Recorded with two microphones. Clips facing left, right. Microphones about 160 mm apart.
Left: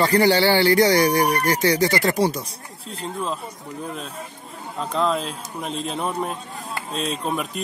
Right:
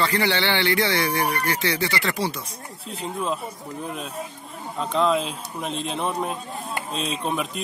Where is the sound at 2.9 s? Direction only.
5° right (ahead or behind).